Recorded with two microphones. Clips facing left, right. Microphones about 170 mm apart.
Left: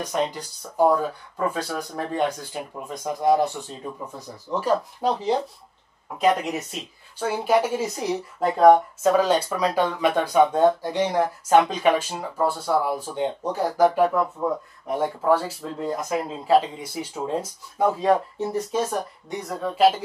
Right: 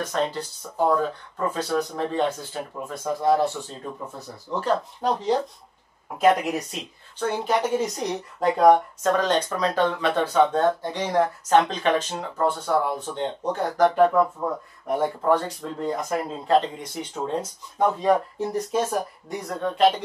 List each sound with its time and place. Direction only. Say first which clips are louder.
0.0 s speech: even; 15° left (ahead or behind)